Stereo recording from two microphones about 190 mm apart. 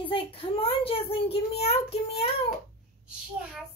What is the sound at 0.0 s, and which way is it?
A child's voice, 30° left (ahead or behind).